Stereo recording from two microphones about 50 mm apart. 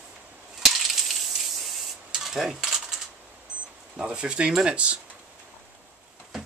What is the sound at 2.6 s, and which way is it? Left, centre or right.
Typewriter, centre.